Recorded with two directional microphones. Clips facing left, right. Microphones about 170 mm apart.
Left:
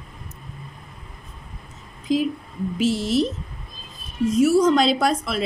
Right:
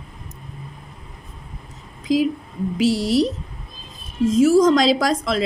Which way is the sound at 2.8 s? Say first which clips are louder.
Right 3 dB; 35° right (ahead or behind).